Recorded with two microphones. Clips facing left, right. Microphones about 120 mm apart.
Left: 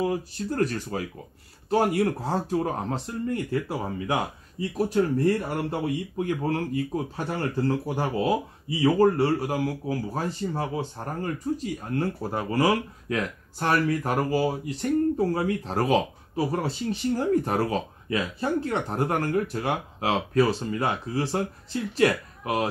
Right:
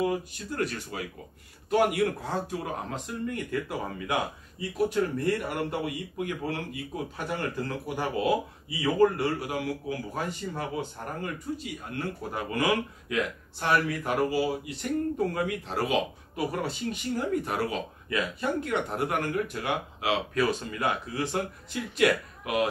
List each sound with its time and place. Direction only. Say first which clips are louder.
0.0 s speech: left 2 dB; 35° left (ahead or behind)